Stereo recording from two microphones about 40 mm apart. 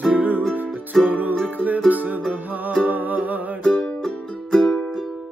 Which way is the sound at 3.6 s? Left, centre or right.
Centre.